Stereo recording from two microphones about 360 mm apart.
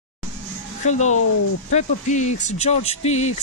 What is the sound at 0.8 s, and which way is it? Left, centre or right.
Speech, centre.